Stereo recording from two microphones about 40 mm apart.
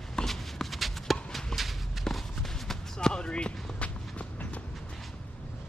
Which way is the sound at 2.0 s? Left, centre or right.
Centre.